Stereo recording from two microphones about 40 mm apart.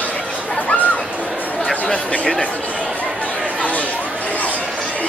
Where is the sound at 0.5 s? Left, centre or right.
Left.